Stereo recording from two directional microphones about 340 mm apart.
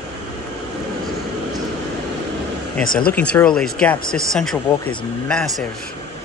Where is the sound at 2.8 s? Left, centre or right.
Left.